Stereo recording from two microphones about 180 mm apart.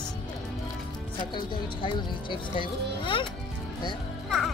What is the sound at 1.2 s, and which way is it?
Speech, 25° left (ahead or behind).